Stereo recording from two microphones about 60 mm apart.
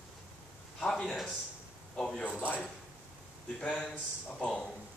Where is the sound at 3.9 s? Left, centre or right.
Centre.